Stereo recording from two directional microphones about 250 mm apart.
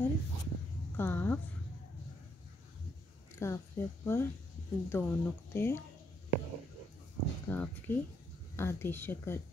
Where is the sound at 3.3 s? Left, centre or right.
Centre.